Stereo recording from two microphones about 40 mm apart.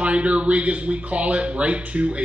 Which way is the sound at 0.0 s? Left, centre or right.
Right.